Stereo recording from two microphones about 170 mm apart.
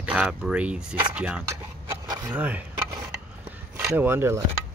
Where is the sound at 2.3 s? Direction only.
10° right (ahead or behind).